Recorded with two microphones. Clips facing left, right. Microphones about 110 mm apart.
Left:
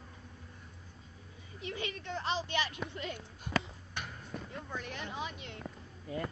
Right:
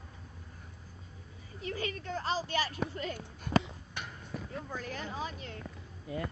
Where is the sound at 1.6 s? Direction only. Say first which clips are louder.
Right 3 dB; 40° right (ahead or behind).